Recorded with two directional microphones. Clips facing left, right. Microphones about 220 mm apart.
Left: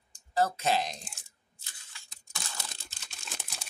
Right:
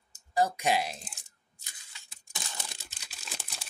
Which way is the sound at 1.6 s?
20° right (ahead or behind).